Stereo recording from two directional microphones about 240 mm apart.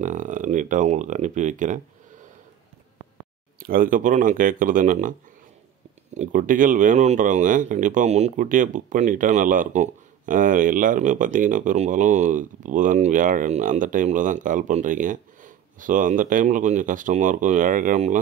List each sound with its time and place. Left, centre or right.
0.0 s speech: right
3.5 s speech: right
6.1 s speech: right